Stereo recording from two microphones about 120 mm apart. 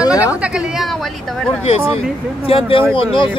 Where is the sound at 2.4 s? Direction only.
50° left (ahead or behind).